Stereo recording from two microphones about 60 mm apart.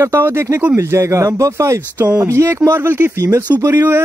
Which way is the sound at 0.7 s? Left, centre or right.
Right.